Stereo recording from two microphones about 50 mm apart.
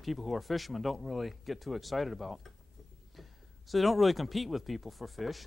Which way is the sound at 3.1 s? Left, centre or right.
Centre.